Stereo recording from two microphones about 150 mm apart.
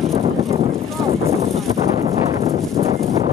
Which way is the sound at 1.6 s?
45° right (ahead or behind).